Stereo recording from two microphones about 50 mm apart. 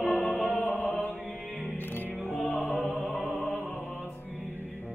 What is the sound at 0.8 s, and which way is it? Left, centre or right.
Mantra, left.